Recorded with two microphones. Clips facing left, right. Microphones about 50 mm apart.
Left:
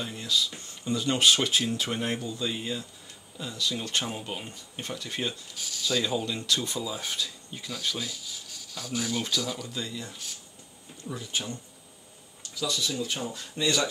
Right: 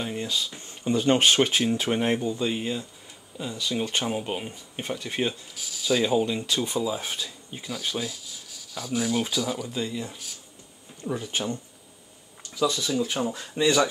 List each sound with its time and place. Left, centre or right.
0.0 s speech: right
8.0 s speech: centre
11.1 s speech: right
12.5 s speech: right